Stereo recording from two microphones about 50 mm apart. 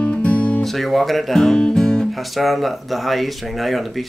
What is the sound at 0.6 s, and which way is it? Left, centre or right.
Speech, centre.